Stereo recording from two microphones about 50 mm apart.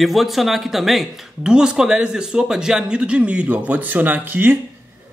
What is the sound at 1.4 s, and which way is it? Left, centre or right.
Speech, centre.